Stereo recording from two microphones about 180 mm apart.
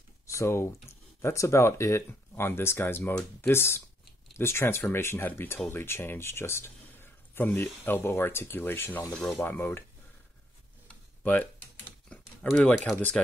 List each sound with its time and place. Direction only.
0.3 s speech: 15° left (ahead or behind)
12.1 s speech: 5° left (ahead or behind)